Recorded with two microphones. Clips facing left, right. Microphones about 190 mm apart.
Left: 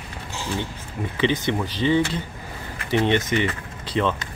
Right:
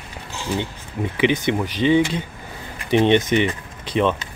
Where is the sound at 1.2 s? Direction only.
15° right (ahead or behind).